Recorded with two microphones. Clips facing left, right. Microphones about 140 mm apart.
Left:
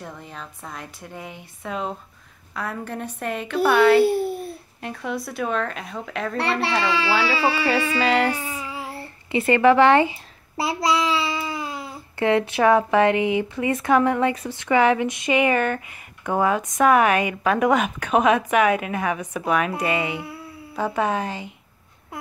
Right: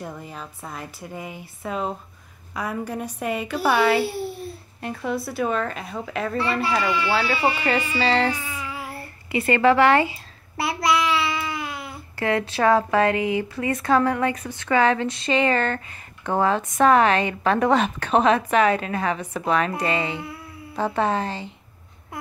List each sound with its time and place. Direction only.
0.0 s a woman's voice: 5° right (ahead or behind)
4.1 s babbling: 50° left (ahead or behind)
4.8 s a woman's voice: centre (ahead or behind)
6.3 s speech: 75° left (ahead or behind); by 7.3 s 90° left
8.1 s a woman's voice: 5° left (ahead or behind)
8.4 s a sound: 35° left (ahead or behind)
10.6 s a child's voice: 30° left (ahead or behind); by 21.5 s 10° left (ahead or behind)